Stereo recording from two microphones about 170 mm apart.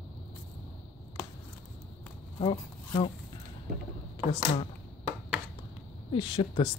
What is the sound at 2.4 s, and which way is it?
Speech, 30° left (ahead or behind).